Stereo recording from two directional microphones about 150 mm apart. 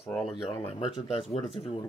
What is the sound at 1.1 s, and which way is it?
Speech, 45° left (ahead or behind).